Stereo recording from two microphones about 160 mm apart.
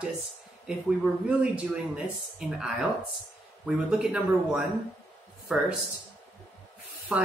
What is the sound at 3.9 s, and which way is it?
Speech, 5° right (ahead or behind).